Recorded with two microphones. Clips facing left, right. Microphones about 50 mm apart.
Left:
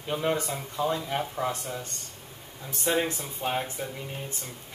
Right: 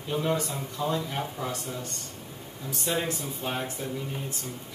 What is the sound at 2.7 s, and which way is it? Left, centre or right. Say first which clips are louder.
Speech: left 3 dB; left.